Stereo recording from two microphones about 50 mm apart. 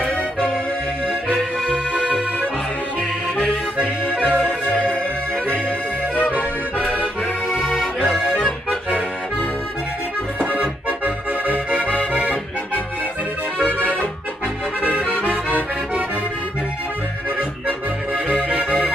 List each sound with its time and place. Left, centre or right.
1.3 s accordion: right
3.3 s accordion: left
3.8 s accordion: right
4.5 s music: left
6.3 s accordion: right
10.4 s accordion: right
13.6 s organ: left
14.8 s accordion: right
18.3 s accordion: right